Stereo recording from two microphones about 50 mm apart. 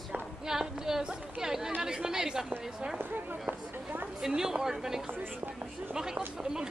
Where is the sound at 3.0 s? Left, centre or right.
Right.